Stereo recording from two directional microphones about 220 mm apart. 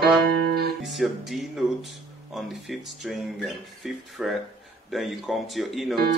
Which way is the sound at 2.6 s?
Centre (ahead or behind).